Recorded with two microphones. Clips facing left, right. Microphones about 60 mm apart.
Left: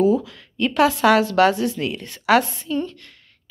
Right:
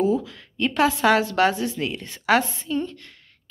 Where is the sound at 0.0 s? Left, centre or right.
Right.